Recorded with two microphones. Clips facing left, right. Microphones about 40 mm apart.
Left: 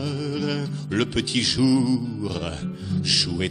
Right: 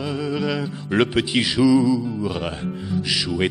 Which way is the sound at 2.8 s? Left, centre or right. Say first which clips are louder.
Right 1 dB; centre.